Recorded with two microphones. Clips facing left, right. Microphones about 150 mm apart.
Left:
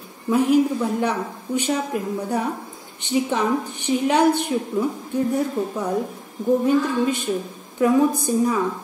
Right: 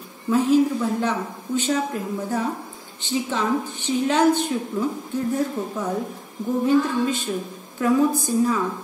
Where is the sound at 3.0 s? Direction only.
15° left (ahead or behind).